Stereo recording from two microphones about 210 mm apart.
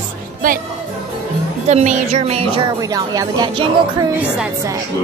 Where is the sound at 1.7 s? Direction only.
30° right (ahead or behind).